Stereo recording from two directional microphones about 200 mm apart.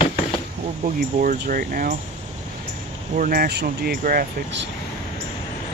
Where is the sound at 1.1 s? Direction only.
40° right (ahead or behind).